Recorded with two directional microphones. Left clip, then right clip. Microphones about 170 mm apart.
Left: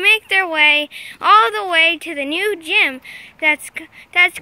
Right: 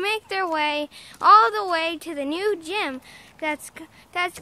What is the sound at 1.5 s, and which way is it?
Speech, 5° left (ahead or behind).